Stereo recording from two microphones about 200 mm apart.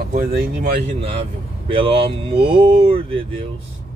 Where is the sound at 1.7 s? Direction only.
25° right (ahead or behind).